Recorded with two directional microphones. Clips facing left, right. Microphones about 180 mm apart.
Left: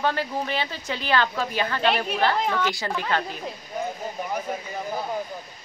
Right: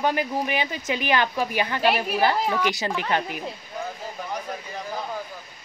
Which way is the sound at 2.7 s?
20° right (ahead or behind).